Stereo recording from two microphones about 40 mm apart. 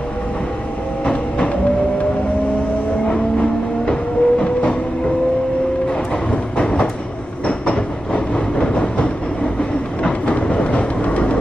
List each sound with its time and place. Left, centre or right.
1.0 s vehicle: left
3.1 s a sound: left
6.6 s train: centre
10.2 s music: left